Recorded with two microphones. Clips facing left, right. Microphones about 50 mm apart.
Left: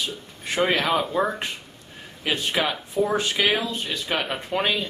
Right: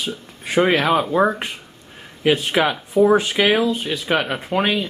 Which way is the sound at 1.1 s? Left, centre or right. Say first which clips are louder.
Right 6 dB; right.